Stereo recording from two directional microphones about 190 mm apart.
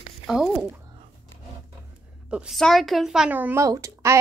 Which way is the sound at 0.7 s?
20° right (ahead or behind).